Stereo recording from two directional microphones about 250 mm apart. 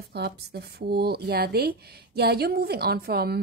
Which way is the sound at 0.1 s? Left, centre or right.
Right.